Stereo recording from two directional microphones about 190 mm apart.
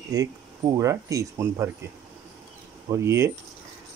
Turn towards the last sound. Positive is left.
turn(degrees=-15)  # may be behind; listen again after turning